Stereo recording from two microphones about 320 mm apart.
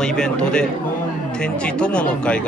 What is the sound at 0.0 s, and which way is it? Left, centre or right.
Speech, centre.